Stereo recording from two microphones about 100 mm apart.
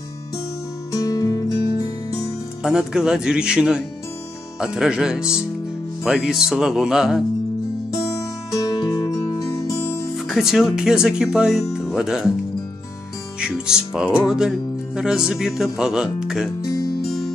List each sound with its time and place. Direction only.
1.0 s music: 40° left (ahead or behind)
2.6 s speech: 5° right (ahead or behind)
7.9 s music: 30° left (ahead or behind)
8.7 s music: 40° left (ahead or behind)
10.1 s speech: centre (ahead or behind)
13.4 s speech: 5° right (ahead or behind)
16.6 s music: 35° left (ahead or behind)